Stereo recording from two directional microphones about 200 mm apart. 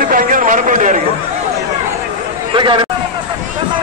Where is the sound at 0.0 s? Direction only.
45° right (ahead or behind).